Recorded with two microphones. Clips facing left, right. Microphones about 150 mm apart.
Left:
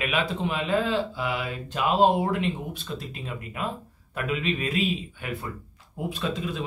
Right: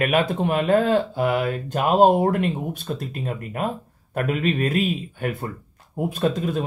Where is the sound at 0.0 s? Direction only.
50° right (ahead or behind).